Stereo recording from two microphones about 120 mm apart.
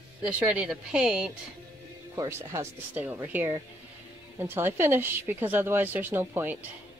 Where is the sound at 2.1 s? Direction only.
25° right (ahead or behind).